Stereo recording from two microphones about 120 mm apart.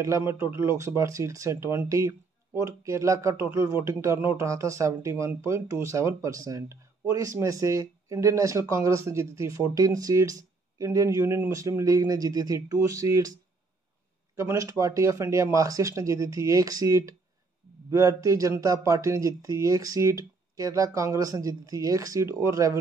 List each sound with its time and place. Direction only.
0.3 s speech: 20° right (ahead or behind)
14.3 s speech: 25° right (ahead or behind)